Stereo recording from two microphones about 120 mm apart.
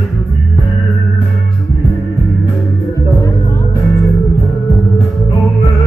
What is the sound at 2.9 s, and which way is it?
Music, 25° left (ahead or behind).